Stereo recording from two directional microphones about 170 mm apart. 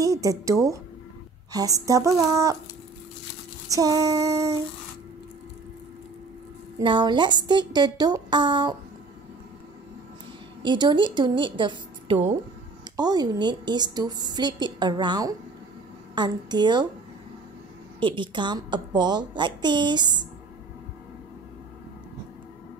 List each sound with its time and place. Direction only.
0.0 s a woman's voice: 20° right (ahead or behind)
3.7 s a woman's voice: 20° right (ahead or behind)
6.8 s a woman's voice: 25° right (ahead or behind)
10.6 s a woman's voice: 25° right (ahead or behind)
18.0 s a woman's voice: 30° right (ahead or behind)